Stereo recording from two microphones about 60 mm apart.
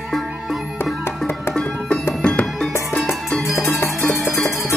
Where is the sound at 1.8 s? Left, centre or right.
Left.